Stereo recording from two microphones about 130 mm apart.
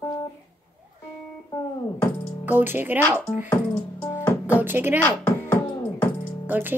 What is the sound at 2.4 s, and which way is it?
Speech, 15° right (ahead or behind).